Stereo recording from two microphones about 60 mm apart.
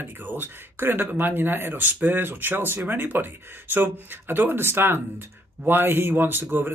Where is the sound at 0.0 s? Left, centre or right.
Right.